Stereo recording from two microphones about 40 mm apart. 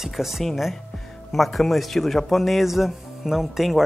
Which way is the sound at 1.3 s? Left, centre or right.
Centre.